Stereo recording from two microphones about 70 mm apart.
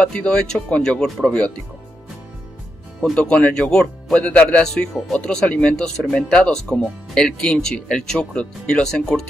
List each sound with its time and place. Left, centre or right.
0.0 s speech: centre
3.2 s speech: centre